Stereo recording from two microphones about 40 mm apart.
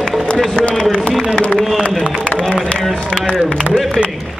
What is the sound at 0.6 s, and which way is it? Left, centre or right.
Run, left.